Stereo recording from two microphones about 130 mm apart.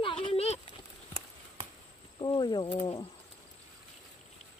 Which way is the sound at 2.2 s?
35° left (ahead or behind).